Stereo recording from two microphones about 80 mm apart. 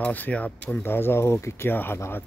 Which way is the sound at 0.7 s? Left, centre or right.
Left.